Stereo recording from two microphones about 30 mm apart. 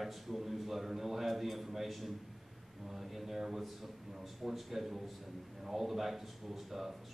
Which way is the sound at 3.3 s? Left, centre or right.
Centre.